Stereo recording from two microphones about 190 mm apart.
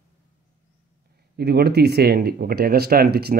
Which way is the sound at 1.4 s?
55° right (ahead or behind).